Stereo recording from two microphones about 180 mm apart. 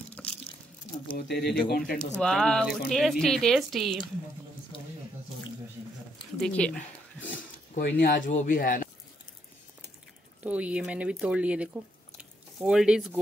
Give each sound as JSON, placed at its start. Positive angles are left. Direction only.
{"t": 0.2, "sound": "a sound", "side_deg": 5}
{"t": 1.1, "sound": "speech", "side_deg": 65}
{"t": 2.1, "sound": "speech", "side_deg": 5}
{"t": 6.4, "sound": "speech", "side_deg": 5}
{"t": 7.8, "sound": "speech", "side_deg": 60}
{"t": 8.3, "sound": "speech", "side_deg": 45}
{"t": 10.4, "sound": "speech", "side_deg": -10}